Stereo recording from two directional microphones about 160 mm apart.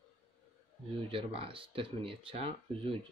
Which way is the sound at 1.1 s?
35° right (ahead or behind).